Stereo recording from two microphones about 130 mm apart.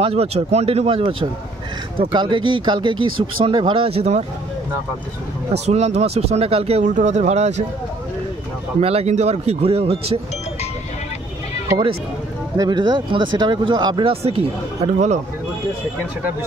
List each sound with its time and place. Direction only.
0.0 s speech: 50° right (ahead or behind)
5.7 s speech: 55° right (ahead or behind)
6.8 s speech: 70° right (ahead or behind)
8.8 s speech: 55° right (ahead or behind)
12.5 s speech: 35° right (ahead or behind)
14.2 s speech: 55° right (ahead or behind)